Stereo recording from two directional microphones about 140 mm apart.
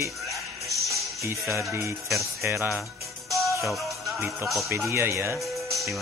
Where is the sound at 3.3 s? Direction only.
Centre (ahead or behind).